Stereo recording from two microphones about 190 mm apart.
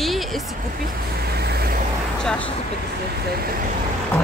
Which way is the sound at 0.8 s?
55° right (ahead or behind).